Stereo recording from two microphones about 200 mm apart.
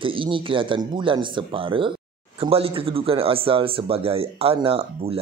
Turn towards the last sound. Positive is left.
turn(degrees=-30)  # may be behind; listen again after turning